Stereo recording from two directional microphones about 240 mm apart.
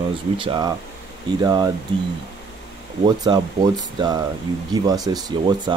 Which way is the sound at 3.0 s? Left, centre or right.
Centre.